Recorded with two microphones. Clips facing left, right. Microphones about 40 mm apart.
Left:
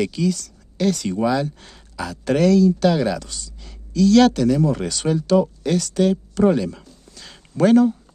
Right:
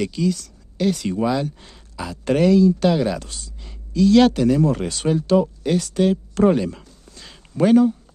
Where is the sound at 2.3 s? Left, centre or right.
Centre.